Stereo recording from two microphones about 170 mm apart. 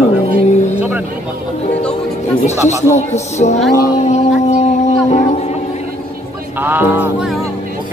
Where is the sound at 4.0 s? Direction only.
40° left (ahead or behind).